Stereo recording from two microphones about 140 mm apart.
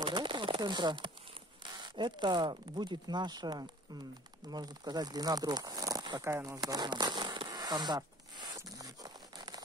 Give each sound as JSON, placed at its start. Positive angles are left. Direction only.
{"t": 0.0, "sound": "a sound", "side_deg": -35}
{"t": 1.6, "sound": "speech", "side_deg": -35}
{"t": 6.3, "sound": "crackle", "side_deg": -25}